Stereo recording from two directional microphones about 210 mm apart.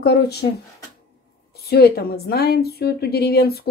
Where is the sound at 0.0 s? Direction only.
50° left (ahead or behind).